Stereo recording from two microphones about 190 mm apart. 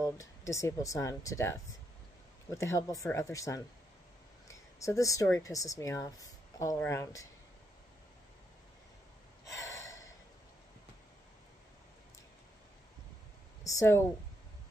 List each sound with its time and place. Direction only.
0.0 s speech: 15° left (ahead or behind)
9.5 s gasp: 15° left (ahead or behind)
13.7 s speech: 15° left (ahead or behind)